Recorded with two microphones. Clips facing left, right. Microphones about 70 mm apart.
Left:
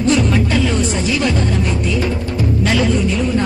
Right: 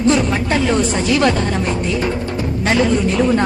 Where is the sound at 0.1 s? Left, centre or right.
Right.